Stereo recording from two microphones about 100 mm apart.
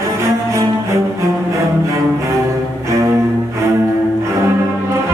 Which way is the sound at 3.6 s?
30° right (ahead or behind).